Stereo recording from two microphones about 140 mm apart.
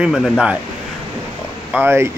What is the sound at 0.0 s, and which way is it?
Speech, 5° right (ahead or behind).